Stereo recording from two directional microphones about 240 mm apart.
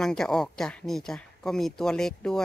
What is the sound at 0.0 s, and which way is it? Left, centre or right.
Speech, centre.